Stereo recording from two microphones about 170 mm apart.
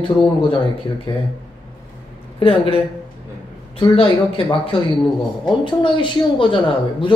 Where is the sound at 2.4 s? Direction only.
30° left (ahead or behind).